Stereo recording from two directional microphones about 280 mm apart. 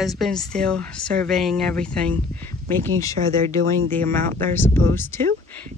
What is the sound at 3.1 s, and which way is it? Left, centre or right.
Speech, right.